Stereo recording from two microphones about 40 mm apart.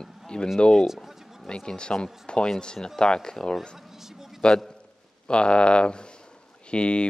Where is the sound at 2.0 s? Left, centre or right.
Left.